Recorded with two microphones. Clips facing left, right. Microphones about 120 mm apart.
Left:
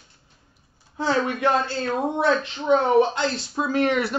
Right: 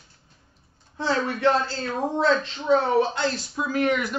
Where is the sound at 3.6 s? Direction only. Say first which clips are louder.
Left 2 dB; 30° left (ahead or behind).